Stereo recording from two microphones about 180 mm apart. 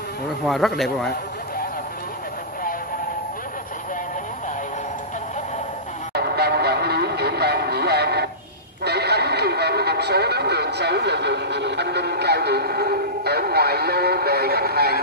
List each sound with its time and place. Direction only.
0.5 s speech: centre (ahead or behind)
6.1 s vehicle: 65° right (ahead or behind)
8.8 s radio: 65° right (ahead or behind)